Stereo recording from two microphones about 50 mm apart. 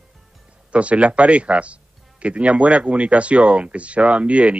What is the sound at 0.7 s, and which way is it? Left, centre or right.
Speech, right.